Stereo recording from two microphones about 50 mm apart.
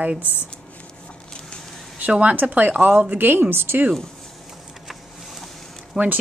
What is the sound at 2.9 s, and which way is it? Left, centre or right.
Speech, right.